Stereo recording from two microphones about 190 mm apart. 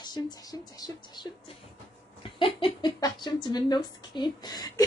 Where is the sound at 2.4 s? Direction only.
25° left (ahead or behind).